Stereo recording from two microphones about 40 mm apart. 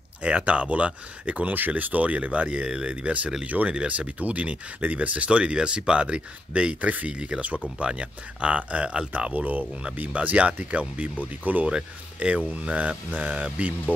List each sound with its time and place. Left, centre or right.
0.2 s speech: right
6.9 s speech: right
7.2 s speech: right
9.3 s speech: right
11.6 s speech: right